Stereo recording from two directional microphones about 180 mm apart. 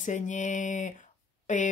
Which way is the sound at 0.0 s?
45° left (ahead or behind).